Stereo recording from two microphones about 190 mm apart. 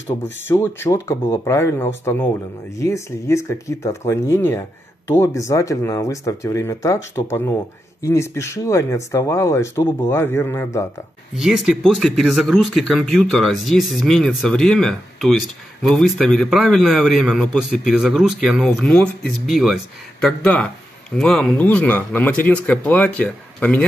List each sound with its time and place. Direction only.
0.5 s speech: 10° left (ahead or behind)
11.3 s speech: 5° right (ahead or behind)